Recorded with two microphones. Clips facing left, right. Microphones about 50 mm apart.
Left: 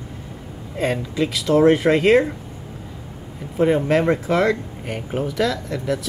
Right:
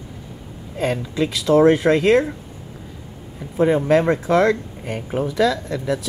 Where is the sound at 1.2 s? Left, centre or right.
Right.